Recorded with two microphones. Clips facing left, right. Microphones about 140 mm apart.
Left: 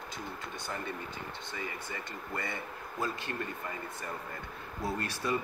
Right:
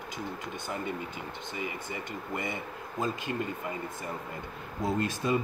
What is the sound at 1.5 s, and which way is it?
Speech, 15° right (ahead or behind).